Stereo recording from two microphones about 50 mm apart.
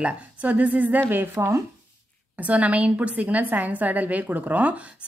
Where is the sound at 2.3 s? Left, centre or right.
Right.